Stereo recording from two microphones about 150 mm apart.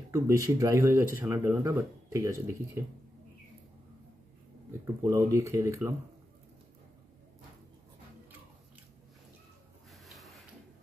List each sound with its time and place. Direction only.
0.1 s speech: 20° right (ahead or behind)
5.0 s speech: 20° right (ahead or behind)
9.8 s a sound: centre (ahead or behind)